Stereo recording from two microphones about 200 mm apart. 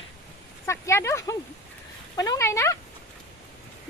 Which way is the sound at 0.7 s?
15° left (ahead or behind).